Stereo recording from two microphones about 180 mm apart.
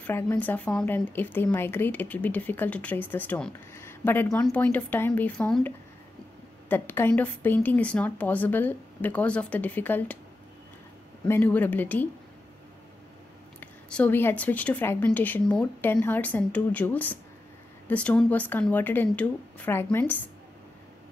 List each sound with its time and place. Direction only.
0.0 s speech: 10° left (ahead or behind)
6.7 s speech: 10° left (ahead or behind)
11.2 s speech: 10° left (ahead or behind)
13.6 s a woman's voice: 5° left (ahead or behind)